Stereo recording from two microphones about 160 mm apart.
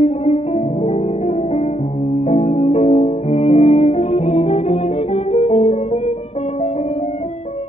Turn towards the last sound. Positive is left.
turn(degrees=40)  # may be behind; listen again after turning